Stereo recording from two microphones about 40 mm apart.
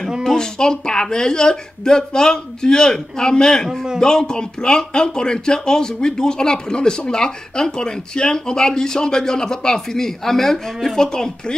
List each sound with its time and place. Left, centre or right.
0.4 s speech: centre